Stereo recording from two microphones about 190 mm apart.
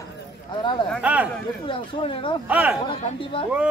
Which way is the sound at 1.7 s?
25° left (ahead or behind).